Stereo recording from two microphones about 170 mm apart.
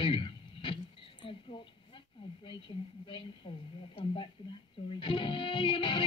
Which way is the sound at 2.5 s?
30° left (ahead or behind).